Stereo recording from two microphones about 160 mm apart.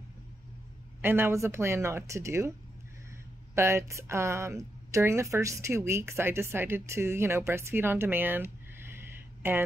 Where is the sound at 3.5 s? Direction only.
15° right (ahead or behind).